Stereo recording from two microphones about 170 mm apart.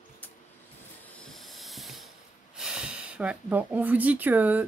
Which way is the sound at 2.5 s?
5° right (ahead or behind).